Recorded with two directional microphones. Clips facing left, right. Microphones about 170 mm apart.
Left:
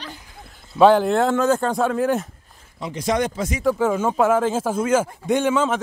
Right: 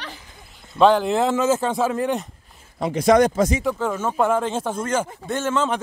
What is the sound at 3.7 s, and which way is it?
Speech, 10° left (ahead or behind).